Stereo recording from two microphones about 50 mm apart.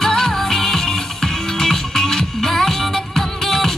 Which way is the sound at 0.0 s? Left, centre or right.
Centre.